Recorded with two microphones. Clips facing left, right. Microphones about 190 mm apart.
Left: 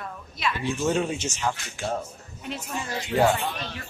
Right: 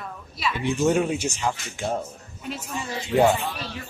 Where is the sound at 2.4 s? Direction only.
Centre (ahead or behind).